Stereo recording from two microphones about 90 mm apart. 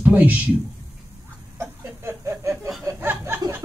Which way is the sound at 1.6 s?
30° right (ahead or behind).